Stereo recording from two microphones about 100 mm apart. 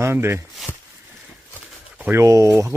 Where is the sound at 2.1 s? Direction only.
30° right (ahead or behind).